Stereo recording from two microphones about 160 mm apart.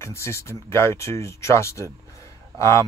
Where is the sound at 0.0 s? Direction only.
15° left (ahead or behind).